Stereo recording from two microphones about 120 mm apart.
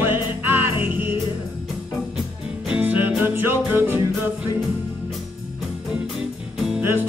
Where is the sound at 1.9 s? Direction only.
Centre (ahead or behind).